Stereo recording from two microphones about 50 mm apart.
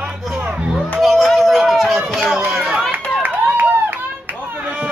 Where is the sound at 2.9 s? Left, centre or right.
Right.